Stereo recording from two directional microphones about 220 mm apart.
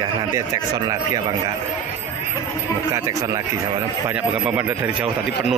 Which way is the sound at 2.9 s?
15° right (ahead or behind).